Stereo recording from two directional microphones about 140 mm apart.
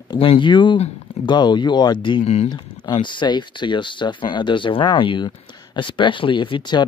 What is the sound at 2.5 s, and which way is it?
Speech, 30° left (ahead or behind).